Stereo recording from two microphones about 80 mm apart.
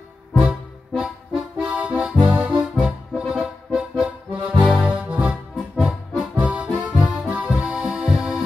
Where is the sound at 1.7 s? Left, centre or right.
Centre.